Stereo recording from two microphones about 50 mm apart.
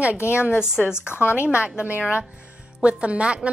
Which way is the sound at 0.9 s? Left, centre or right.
Left.